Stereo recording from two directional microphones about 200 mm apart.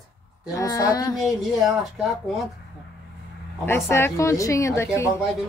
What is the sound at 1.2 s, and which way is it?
Speech, centre (ahead or behind).